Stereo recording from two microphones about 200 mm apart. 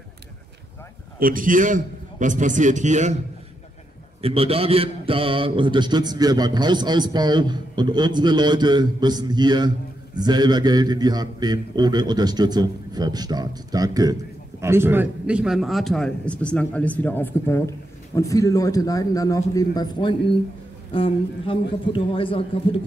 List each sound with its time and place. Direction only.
1.2 s a man's voice: 45° right (ahead or behind)
4.2 s a man's voice: 30° right (ahead or behind); by 22.8 s 25° left (ahead or behind)